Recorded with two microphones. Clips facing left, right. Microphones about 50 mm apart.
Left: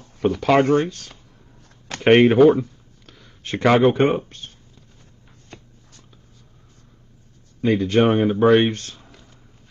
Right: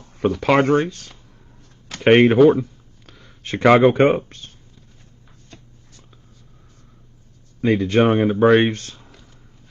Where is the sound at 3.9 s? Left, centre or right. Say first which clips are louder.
Right 3 dB; right.